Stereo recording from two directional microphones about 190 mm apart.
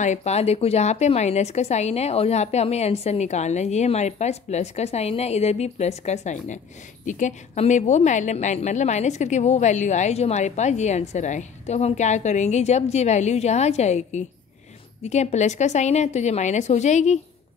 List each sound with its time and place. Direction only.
0.0 s a woman's voice: 35° left (ahead or behind)